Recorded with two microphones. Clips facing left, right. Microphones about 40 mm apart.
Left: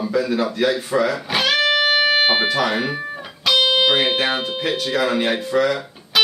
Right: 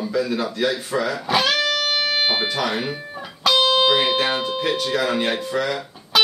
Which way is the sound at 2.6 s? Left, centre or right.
Centre.